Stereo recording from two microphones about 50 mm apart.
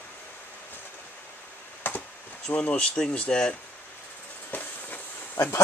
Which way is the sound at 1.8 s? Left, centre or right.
Left.